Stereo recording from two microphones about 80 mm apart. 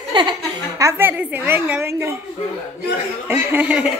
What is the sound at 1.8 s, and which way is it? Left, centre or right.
Speech, right.